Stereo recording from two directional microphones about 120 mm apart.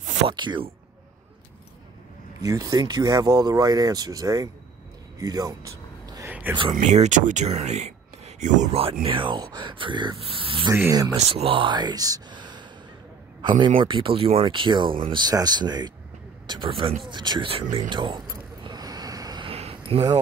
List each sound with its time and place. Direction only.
0.0 s a sound: 85° right
0.3 s speech: 40° right (ahead or behind)
2.4 s speech: 30° right (ahead or behind)
6.7 s speech: 80° right
8.7 s speech: 50° right (ahead or behind)
10.7 s speech: 25° right (ahead or behind)
11.1 s speech: 55° right (ahead or behind)
17.1 s a sound: 40° right (ahead or behind)
19.4 s a sound: 55° right (ahead or behind)